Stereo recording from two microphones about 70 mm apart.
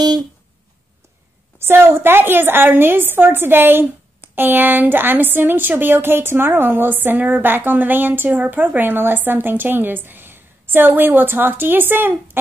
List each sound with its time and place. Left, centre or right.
1.6 s a woman's voice: right